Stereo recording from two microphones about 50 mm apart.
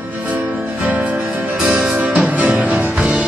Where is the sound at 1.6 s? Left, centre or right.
Right.